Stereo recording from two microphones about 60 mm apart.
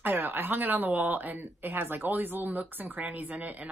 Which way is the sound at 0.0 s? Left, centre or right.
Right.